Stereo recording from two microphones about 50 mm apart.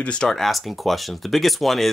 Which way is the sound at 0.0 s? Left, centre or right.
Left.